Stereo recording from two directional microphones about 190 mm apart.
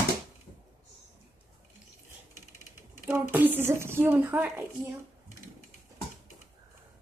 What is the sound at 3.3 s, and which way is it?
A woman's voice, 10° right (ahead or behind).